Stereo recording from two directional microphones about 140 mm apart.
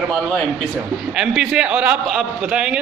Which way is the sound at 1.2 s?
5° right (ahead or behind).